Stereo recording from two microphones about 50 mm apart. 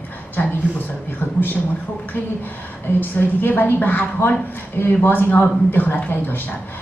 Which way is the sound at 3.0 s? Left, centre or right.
Left.